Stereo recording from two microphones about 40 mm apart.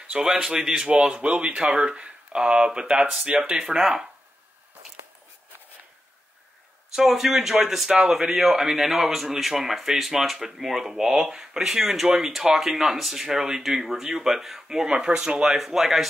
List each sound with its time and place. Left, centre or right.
0.2 s speech: centre
1.1 s speech: right
3.8 s speech: centre
6.9 s speech: centre
14.7 s speech: centre
15.4 s speech: centre